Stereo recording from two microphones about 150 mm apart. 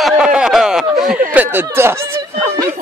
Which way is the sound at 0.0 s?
5° right (ahead or behind).